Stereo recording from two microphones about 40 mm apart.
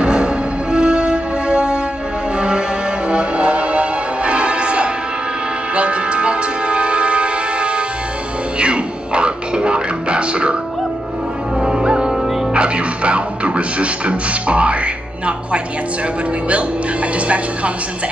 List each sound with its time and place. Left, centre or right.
0.0 s music: right
11.6 s music: centre
12.5 s music: right